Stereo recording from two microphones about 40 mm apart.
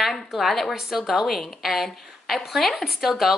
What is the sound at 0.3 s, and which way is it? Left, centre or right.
A woman's voice, centre.